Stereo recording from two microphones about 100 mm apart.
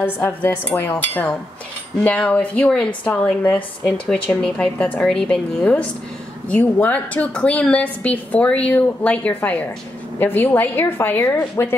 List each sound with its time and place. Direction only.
0.2 s a woman's voice: 20° left (ahead or behind)